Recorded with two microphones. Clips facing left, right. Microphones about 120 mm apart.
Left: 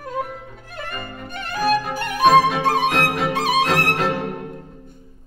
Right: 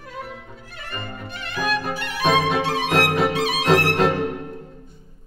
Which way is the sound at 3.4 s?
45° left (ahead or behind).